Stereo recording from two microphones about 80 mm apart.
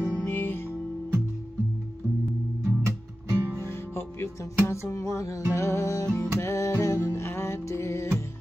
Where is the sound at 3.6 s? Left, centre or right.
Left.